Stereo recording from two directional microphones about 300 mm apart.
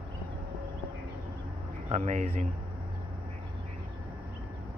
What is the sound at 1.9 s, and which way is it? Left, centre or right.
Speech, right.